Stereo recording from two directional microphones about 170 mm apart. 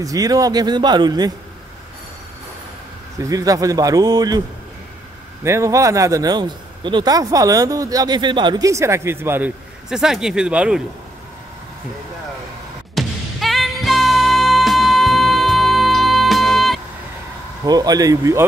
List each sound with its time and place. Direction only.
0.0 s a man's voice: 20° right (ahead or behind)
3.3 s a man's voice: 20° right (ahead or behind)
5.4 s a man's voice: 15° right (ahead or behind)
9.8 s speech: 5° right (ahead or behind)
12.9 s music: centre (ahead or behind)
17.6 s a man's voice: 20° right (ahead or behind)